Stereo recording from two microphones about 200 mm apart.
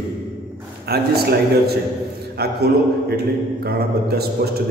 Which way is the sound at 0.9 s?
50° right (ahead or behind).